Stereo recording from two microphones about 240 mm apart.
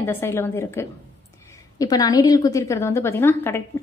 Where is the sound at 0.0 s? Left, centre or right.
Centre.